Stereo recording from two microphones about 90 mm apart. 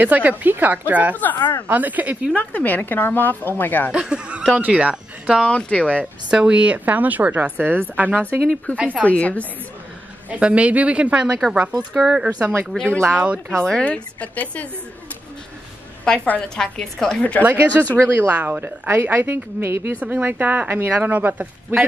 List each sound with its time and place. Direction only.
0.0 s speech: 20° right (ahead or behind)
1.1 s a woman's voice: 20° left (ahead or behind)
1.7 s a woman's voice: 20° right (ahead or behind)
2.3 s a woman's voice: 20° left (ahead or behind)
3.9 s a woman's voice: 10° right (ahead or behind)
5.4 s a woman's voice: 10° left (ahead or behind)
5.9 s a woman's voice: 10° right (ahead or behind)
9.0 s a woman's voice: 15° left (ahead or behind)
10.4 s a woman's voice: 15° right (ahead or behind)
12.7 s a woman's voice: 10° left (ahead or behind)
16.1 s a woman's voice: 10° left (ahead or behind)
17.4 s speech: 20° right (ahead or behind)
18.3 s speech: 20° right (ahead or behind)
19.9 s speech: 15° right (ahead or behind)